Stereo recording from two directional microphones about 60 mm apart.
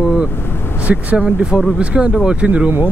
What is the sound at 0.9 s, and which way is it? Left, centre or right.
Speech, right.